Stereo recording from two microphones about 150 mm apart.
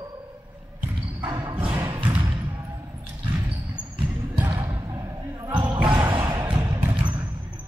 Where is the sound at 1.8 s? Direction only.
30° right (ahead or behind).